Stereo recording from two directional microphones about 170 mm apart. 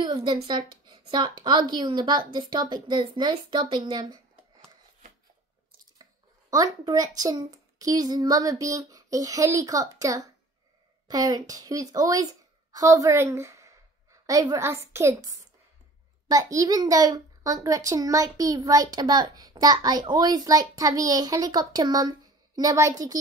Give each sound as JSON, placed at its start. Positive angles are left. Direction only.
{"t": 0.0, "sound": "a child's voice", "side_deg": -25}
{"t": 6.5, "sound": "a child's voice", "side_deg": -20}